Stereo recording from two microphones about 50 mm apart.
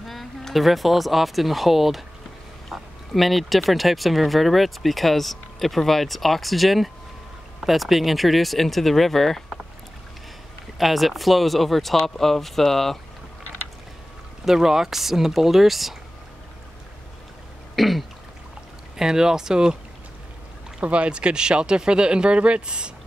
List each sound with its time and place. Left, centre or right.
0.0 s a sound: centre
0.7 s speech: centre
10.8 s speech: centre
14.4 s speech: centre
17.7 s speech: centre
18.9 s speech: centre
20.8 s speech: right